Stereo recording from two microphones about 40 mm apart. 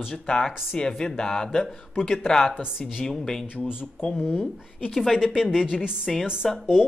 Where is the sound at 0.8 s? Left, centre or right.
Left.